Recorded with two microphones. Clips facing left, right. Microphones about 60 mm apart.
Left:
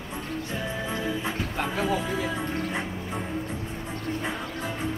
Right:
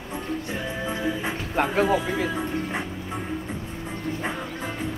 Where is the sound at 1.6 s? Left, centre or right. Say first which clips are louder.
Right 6 dB; right.